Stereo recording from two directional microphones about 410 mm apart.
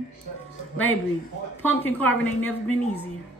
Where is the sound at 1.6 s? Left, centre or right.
Centre.